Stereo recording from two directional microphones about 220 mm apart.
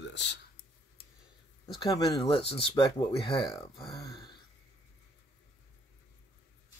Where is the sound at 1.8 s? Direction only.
15° left (ahead or behind).